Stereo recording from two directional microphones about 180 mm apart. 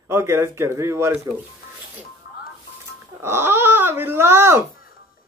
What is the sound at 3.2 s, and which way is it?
Speech, 15° right (ahead or behind).